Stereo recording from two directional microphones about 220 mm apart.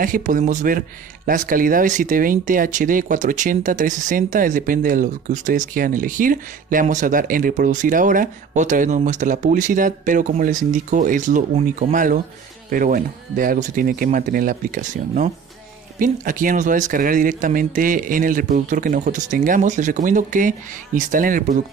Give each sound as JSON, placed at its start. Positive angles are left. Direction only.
{"t": 0.0, "sound": "speech", "side_deg": -35}